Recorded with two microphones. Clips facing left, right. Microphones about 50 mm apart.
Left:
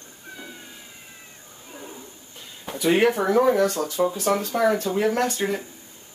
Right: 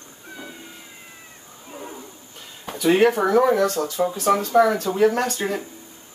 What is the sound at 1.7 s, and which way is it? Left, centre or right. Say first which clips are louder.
Roaring cats: right 4 dB; centre.